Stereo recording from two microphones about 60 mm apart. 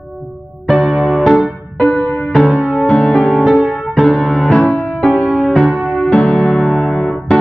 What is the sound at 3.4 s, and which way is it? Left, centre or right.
Music, centre.